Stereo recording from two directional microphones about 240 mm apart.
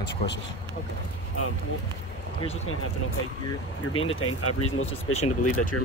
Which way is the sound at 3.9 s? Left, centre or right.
Left.